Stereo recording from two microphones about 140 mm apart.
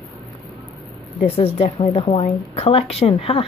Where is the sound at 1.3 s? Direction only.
45° left (ahead or behind).